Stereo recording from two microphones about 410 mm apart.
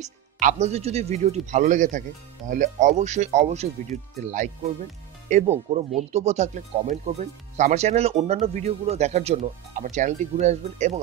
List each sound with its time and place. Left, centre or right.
0.0 s speech: centre